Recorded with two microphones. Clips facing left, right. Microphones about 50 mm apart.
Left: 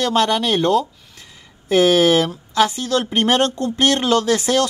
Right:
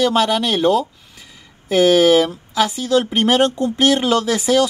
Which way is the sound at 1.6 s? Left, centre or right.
Centre.